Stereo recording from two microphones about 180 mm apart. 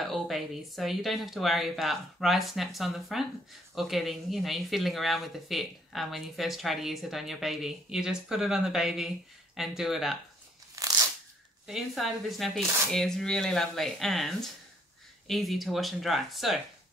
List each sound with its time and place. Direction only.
0.0 s speech: centre (ahead or behind)
10.8 s crunch: 20° right (ahead or behind)
11.6 s speech: centre (ahead or behind)